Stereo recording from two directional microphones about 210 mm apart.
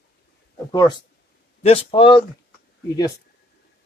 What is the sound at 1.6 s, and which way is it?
Speech, 30° left (ahead or behind).